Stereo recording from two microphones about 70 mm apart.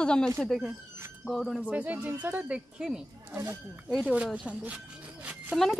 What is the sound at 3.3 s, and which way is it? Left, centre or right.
Speech, right.